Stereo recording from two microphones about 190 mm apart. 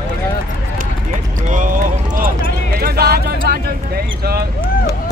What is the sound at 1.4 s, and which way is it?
Clip-clop, 45° right (ahead or behind).